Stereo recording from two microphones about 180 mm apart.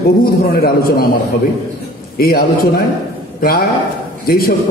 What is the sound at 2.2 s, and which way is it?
Speech, 55° left (ahead or behind).